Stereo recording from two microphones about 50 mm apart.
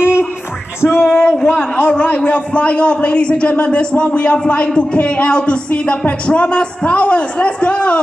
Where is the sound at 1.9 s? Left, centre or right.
Left.